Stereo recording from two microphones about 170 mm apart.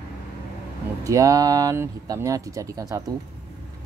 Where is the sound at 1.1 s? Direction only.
20° right (ahead or behind).